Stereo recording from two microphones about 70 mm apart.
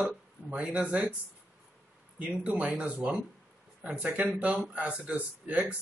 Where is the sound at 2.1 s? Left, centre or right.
Centre.